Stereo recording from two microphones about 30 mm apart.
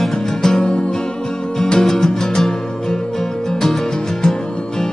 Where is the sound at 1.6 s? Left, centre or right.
Left.